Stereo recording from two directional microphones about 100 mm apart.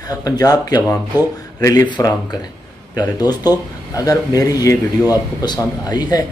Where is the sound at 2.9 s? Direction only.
40° left (ahead or behind).